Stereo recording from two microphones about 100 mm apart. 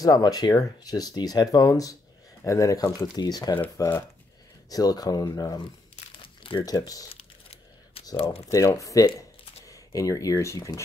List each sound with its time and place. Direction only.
0.0 s speech: 40° left (ahead or behind)
6.2 s crumpling: 60° left (ahead or behind)
6.6 s speech: 40° left (ahead or behind)
8.5 s speech: 35° left (ahead or behind)